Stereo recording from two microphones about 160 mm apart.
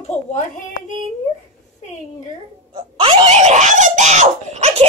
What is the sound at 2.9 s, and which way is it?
Screaming, 40° right (ahead or behind).